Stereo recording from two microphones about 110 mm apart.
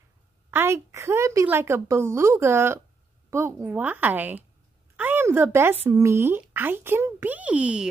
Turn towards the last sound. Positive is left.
turn(degrees=-10)  # may be behind; listen again after turning